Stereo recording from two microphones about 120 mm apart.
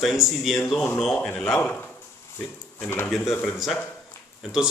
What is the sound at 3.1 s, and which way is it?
Speech, centre (ahead or behind).